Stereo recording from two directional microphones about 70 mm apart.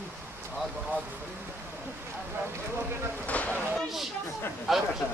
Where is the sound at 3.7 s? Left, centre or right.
Centre.